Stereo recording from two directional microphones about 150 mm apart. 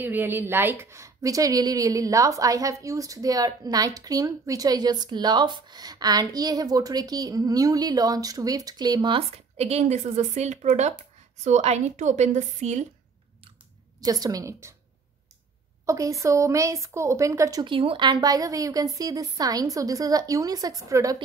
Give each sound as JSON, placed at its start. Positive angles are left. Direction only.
{"t": 0.0, "sound": "a woman's voice", "side_deg": -15}
{"t": 9.3, "sound": "a woman's voice", "side_deg": -45}
{"t": 14.0, "sound": "a woman's voice", "side_deg": -25}
{"t": 15.8, "sound": "a woman's voice", "side_deg": -20}